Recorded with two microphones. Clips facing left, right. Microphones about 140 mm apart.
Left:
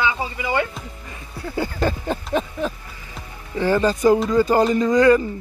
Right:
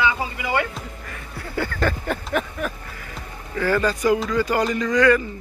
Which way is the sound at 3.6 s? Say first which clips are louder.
Left 3 dB; 20° left (ahead or behind).